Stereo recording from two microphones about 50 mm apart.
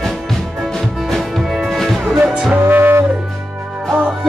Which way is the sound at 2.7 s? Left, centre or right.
Right.